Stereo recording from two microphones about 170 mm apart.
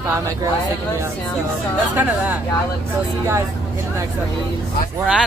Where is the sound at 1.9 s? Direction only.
10° right (ahead or behind).